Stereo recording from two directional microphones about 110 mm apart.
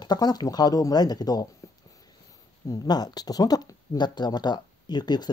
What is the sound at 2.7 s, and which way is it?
Speech, 35° left (ahead or behind).